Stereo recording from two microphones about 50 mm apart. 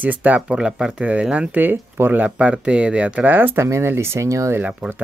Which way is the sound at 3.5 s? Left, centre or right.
Right.